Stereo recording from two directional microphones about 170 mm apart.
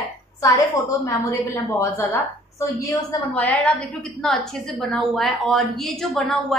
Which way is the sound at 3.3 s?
10° left (ahead or behind).